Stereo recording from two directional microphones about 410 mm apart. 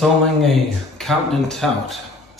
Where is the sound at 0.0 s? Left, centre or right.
Centre.